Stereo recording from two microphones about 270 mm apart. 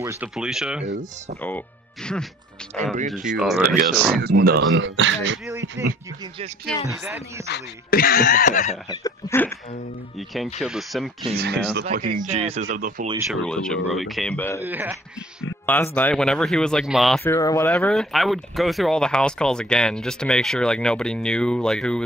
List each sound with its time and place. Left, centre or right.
0.0 s speech: centre
2.8 s speech: right
3.3 s speech: centre
3.6 s speech: right
7.4 s speech: left
9.0 s speech: centre
11.3 s speech: right
12.2 s speech: right
13.3 s speech: centre
14.6 s speech: centre
15.6 s speech: centre